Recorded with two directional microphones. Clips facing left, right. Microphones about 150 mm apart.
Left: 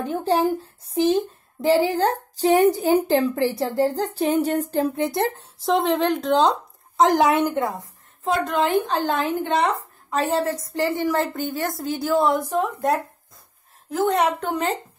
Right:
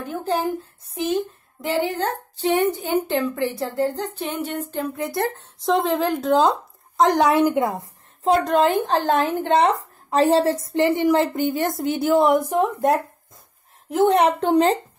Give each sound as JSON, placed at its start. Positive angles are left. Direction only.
{"t": 0.8, "sound": "speech", "side_deg": 30}
{"t": 5.6, "sound": "speech", "side_deg": 0}
{"t": 7.6, "sound": "a sound", "side_deg": -25}
{"t": 8.5, "sound": "a woman's voice", "side_deg": -40}
{"t": 10.0, "sound": "a woman's voice", "side_deg": -35}